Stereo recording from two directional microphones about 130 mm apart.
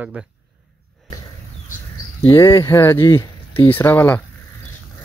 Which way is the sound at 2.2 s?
25° left (ahead or behind).